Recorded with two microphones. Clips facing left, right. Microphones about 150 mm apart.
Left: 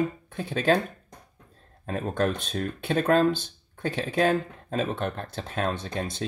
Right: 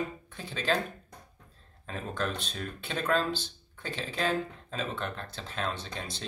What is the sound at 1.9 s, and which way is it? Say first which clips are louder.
Speech: left 8 dB; 50° left (ahead or behind).